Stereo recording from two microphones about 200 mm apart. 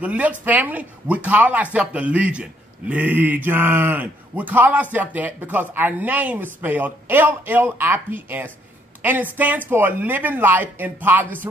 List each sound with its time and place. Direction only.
0.0 s speech: 5° right (ahead or behind)